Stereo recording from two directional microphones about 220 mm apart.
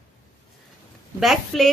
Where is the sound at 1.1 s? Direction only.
Centre (ahead or behind).